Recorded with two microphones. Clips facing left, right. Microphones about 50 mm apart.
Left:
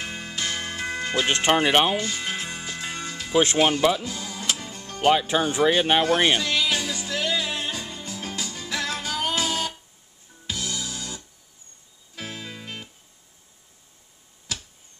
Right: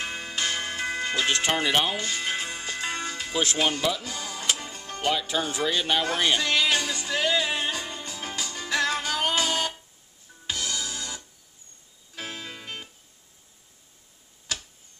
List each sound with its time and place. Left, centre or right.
0.0 s music: centre
1.1 s speech: left
2.0 s music: centre
5.0 s speech: left
6.4 s music: centre